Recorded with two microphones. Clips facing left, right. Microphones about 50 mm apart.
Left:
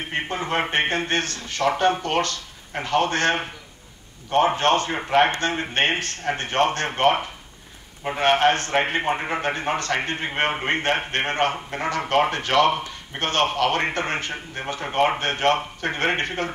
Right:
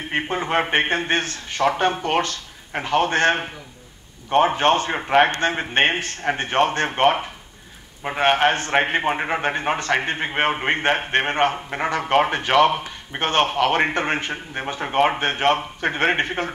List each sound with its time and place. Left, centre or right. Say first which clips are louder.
0.1 s a man's voice: right 4 dB; right